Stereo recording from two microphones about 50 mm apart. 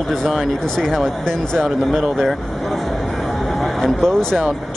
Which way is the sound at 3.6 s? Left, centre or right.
Centre.